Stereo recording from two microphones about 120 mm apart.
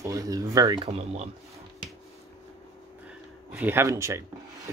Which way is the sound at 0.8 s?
60° right (ahead or behind).